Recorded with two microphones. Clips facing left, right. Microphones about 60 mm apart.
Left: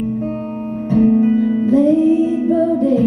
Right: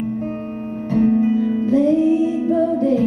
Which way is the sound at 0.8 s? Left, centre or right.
Centre.